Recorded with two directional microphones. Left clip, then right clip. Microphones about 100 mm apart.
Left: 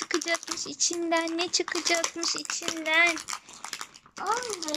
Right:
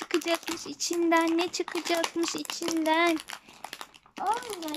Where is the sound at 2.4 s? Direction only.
65° right (ahead or behind).